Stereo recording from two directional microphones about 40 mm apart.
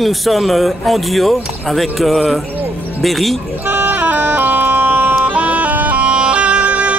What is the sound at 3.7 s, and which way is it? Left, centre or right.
Music, right.